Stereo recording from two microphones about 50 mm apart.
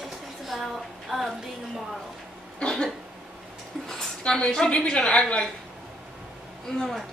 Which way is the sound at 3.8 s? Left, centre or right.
Centre.